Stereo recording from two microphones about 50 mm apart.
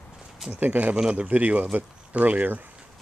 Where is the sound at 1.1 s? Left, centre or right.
Right.